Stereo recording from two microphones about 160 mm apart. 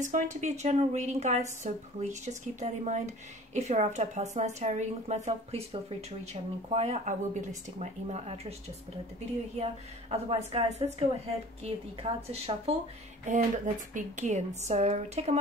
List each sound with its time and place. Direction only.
0.0 s a woman's voice: 50° right (ahead or behind)
9.6 s speech: 40° right (ahead or behind)
13.9 s a woman's voice: 50° right (ahead or behind)